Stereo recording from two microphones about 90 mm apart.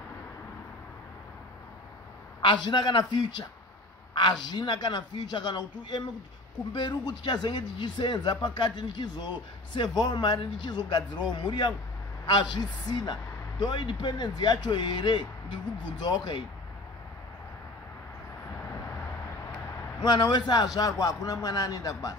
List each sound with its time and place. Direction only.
2.4 s a man's voice: 55° left (ahead or behind)
20.0 s a man's voice: 55° left (ahead or behind)